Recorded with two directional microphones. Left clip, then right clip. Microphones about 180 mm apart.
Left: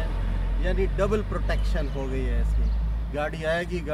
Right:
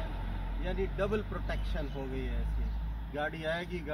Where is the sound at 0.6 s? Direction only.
10° left (ahead or behind).